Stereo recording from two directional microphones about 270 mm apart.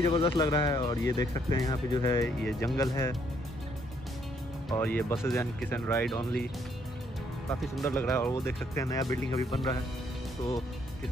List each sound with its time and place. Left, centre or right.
0.0 s speech: centre
4.6 s speech: centre
7.6 s speech: centre